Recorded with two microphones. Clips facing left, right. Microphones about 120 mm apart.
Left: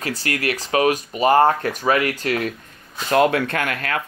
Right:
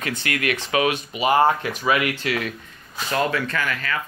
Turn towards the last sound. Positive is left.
turn(degrees=60)  # may be behind; listen again after turning